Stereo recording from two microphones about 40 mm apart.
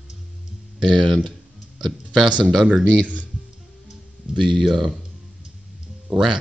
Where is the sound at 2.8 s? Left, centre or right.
Right.